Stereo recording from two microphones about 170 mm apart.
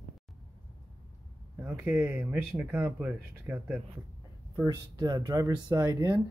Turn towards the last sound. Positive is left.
turn(degrees=-20)  # may be behind; listen again after turning